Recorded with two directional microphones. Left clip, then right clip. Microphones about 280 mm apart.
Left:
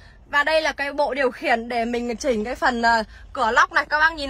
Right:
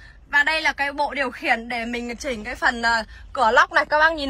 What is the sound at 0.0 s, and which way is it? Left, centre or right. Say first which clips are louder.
A woman's voice: right 2 dB; centre.